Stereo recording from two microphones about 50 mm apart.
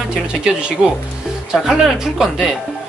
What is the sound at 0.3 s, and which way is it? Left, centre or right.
Speech, centre.